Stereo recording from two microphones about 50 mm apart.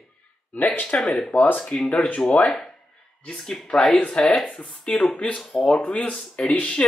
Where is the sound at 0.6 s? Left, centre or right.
Left.